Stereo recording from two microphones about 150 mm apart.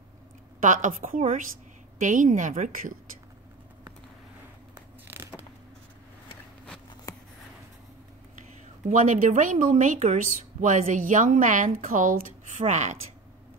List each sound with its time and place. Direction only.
0.6 s speech: 55° right (ahead or behind)
5.0 s a sound: 15° right (ahead or behind)
7.1 s writing: 25° left (ahead or behind)
8.8 s speech: 60° right (ahead or behind)